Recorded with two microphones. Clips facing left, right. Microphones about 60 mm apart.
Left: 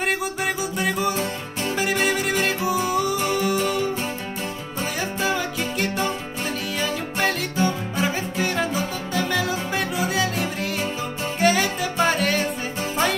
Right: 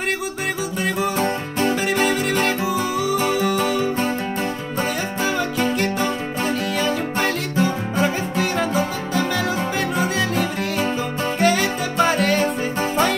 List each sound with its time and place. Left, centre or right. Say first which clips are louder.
0.7 s music: right 1 dB; centre
1.1 s music: right 5 dB; right
1.8 s music: right 2 dB; centre
7.6 s music: right 2 dB; centre
11.3 s music: right 1 dB; centre